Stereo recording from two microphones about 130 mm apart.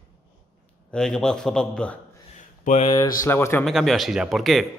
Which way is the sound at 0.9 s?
5° left (ahead or behind).